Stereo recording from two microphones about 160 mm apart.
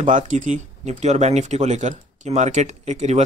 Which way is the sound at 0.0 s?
50° right (ahead or behind).